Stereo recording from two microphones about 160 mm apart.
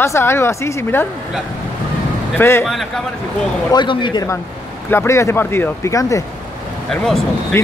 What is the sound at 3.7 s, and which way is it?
Speech, 30° left (ahead or behind).